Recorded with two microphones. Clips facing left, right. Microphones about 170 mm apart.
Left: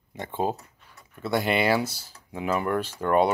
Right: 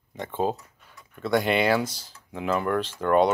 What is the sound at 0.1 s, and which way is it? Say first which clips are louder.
Speech: right 1 dB; 10° left (ahead or behind).